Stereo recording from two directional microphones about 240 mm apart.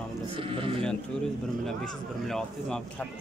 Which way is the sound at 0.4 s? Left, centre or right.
Right.